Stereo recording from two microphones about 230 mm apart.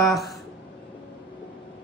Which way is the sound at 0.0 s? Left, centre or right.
Centre.